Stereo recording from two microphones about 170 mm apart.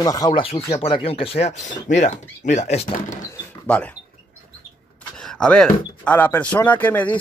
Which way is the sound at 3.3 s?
10° left (ahead or behind).